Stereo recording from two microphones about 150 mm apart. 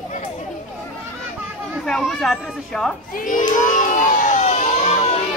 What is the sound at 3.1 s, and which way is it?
Crowd, 65° left (ahead or behind).